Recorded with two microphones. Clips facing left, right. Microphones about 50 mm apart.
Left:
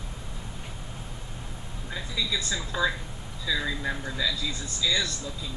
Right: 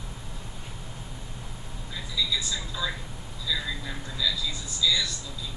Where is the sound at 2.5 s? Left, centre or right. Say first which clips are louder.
Left 5 dB; left.